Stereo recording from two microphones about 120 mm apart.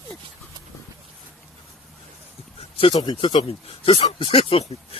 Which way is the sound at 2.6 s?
55° left (ahead or behind).